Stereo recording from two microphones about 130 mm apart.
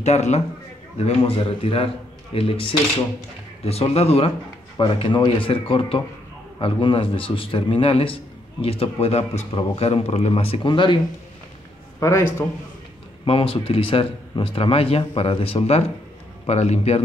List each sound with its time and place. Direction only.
0.0 s a man's voice: 55° left (ahead or behind)
4.7 s a man's voice: 40° left (ahead or behind)
12.0 s a man's voice: 20° left (ahead or behind)
13.2 s a man's voice: 45° left (ahead or behind)